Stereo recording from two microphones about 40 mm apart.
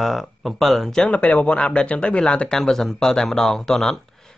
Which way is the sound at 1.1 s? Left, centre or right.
Left.